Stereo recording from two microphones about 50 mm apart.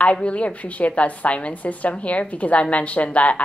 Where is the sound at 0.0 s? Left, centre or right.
Left.